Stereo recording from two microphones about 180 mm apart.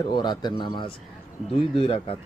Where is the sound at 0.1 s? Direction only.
25° left (ahead or behind).